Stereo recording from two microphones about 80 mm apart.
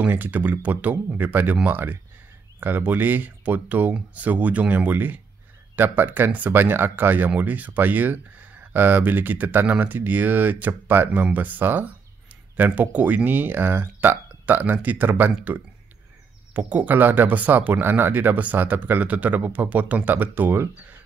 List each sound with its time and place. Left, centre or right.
0.0 s speech: right
16.5 s speech: right